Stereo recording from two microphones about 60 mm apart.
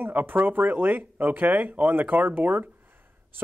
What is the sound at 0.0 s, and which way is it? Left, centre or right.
A man's voice, right.